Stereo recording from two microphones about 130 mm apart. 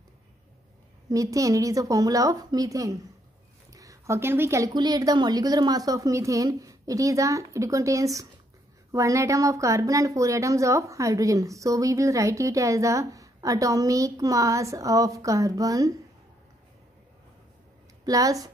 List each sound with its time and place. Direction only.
1.0 s a woman's voice: 25° right (ahead or behind)
3.7 s a sound: 25° right (ahead or behind)
4.7 s a woman's voice: 30° right (ahead or behind)
18.0 s a woman's voice: 25° right (ahead or behind)